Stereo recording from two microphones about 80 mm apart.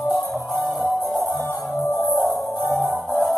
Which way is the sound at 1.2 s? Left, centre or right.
Left.